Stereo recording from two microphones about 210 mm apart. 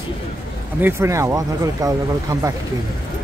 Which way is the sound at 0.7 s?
10° right (ahead or behind).